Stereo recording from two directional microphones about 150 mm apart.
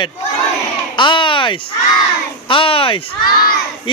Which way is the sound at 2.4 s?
35° left (ahead or behind).